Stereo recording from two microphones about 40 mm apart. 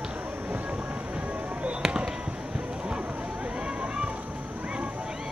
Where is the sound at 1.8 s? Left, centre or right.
Right.